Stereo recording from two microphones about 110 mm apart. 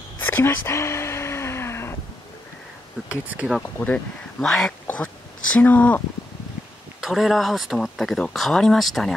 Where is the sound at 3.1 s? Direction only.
10° right (ahead or behind).